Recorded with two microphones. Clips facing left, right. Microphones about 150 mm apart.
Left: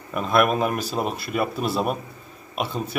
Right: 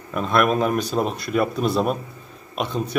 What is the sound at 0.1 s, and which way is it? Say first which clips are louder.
A man's voice: right 1 dB; 5° left (ahead or behind).